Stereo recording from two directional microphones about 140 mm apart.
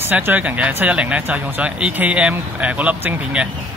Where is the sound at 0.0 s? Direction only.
15° right (ahead or behind).